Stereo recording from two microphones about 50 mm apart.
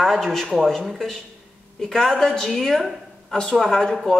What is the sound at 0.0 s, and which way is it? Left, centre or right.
A woman's voice, centre.